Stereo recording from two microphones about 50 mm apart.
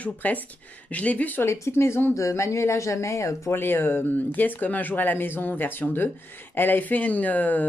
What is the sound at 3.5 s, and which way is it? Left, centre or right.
Speech, left.